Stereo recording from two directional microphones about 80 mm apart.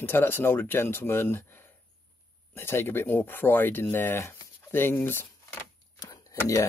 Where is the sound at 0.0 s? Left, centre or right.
Left.